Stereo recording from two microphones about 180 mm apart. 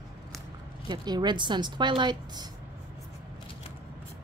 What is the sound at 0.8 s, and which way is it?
A woman's voice, 25° right (ahead or behind).